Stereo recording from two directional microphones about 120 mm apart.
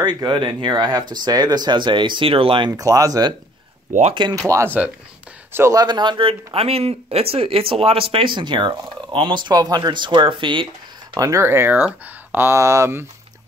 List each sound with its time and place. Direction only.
0.0 s speech: 35° right (ahead or behind)
2.8 s speech: 30° right (ahead or behind)
4.5 s speech: 25° right (ahead or behind)
5.8 s speech: 40° right (ahead or behind)
11.1 s speech: 25° right (ahead or behind)